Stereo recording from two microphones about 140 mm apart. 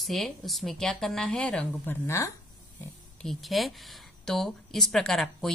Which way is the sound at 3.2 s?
Centre (ahead or behind).